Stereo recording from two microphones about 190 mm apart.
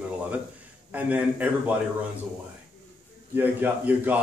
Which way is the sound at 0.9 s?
10° right (ahead or behind).